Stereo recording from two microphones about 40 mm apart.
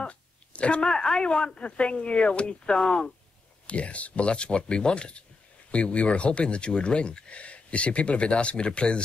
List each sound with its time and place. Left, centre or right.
0.0 s speech: left
3.6 s speech: left